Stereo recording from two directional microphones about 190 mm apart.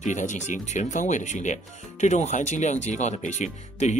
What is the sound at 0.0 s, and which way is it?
Speech, 40° left (ahead or behind).